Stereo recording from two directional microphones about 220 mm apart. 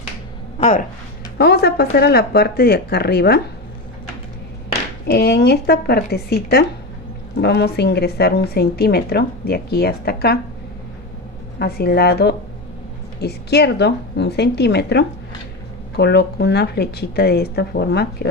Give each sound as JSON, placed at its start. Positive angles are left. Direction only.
{"t": 0.6, "sound": "speech", "side_deg": 30}
{"t": 1.4, "sound": "a woman's voice", "side_deg": 45}
{"t": 5.0, "sound": "a woman's voice", "side_deg": 45}
{"t": 11.5, "sound": "a woman's voice", "side_deg": 45}